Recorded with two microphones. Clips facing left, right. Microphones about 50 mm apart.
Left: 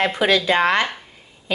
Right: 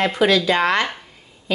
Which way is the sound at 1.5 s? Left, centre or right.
Left.